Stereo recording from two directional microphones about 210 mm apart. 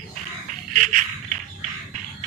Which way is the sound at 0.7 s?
40° right (ahead or behind).